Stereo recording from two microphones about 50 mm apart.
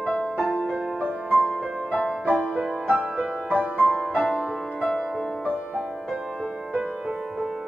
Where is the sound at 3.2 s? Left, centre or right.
Centre.